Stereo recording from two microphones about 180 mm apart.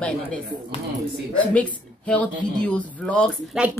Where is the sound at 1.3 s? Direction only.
10° left (ahead or behind).